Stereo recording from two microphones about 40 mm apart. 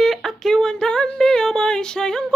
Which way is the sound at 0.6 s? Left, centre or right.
Left.